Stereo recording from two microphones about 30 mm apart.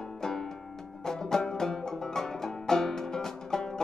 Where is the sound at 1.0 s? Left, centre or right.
Centre.